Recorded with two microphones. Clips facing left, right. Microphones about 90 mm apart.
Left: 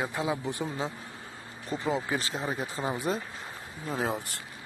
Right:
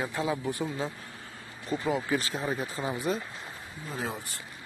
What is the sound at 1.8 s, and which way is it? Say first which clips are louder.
Speech: right 1 dB; 20° left (ahead or behind).